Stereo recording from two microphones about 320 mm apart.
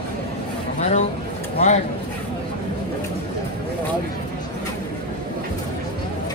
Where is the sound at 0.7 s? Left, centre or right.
Left.